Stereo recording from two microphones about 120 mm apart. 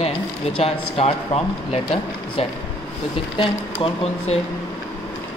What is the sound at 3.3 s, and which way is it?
Speech, 50° left (ahead or behind).